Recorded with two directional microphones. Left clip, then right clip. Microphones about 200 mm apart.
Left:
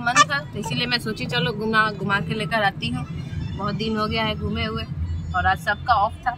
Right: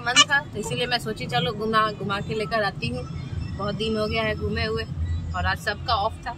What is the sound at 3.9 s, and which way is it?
Speech, 15° right (ahead or behind).